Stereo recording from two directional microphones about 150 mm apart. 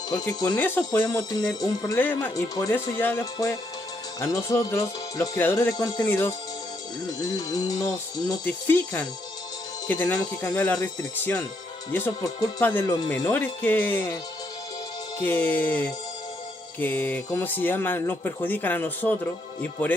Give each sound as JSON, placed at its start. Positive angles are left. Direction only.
{"t": 0.1, "sound": "speech", "side_deg": 25}
{"t": 8.5, "sound": "speech", "side_deg": 15}
{"t": 15.2, "sound": "speech", "side_deg": 15}